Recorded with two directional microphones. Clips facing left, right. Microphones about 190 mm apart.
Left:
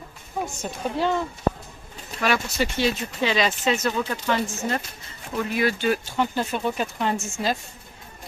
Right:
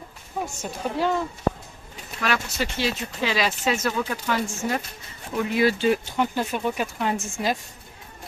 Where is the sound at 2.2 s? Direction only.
Centre (ahead or behind).